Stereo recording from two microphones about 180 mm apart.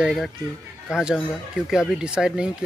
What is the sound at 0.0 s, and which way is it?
Speech, centre (ahead or behind).